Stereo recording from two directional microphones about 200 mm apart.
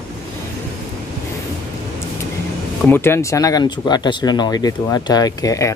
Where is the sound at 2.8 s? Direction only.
10° left (ahead or behind).